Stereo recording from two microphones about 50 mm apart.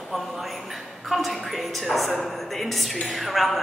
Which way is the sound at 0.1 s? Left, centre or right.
Centre.